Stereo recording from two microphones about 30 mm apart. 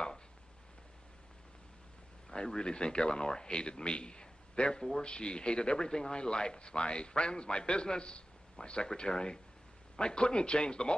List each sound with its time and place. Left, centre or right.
2.3 s speech: left